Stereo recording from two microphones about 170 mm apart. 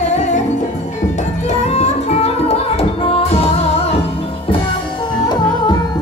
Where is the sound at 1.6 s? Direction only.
40° left (ahead or behind).